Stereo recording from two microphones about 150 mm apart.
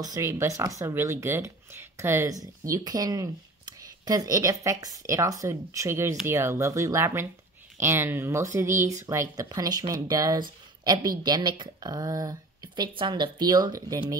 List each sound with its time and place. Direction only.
0.0 s speech: 20° right (ahead or behind)